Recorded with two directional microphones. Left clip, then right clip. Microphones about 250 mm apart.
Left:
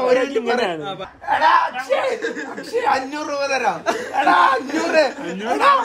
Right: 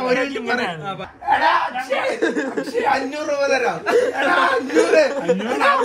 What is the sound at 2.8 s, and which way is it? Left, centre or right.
A man's voice, left.